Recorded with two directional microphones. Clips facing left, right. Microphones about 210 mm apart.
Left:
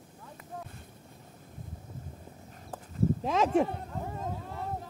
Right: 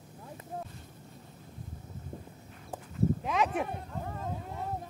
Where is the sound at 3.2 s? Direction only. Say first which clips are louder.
Left 4 dB; 25° left (ahead or behind).